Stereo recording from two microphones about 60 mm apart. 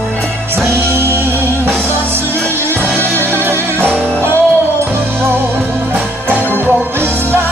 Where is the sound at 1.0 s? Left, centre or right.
Right.